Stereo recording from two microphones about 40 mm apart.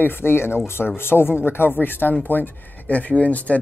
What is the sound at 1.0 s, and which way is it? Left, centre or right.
Speech, left.